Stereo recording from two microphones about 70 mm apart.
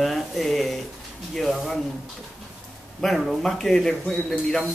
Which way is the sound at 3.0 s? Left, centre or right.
Centre.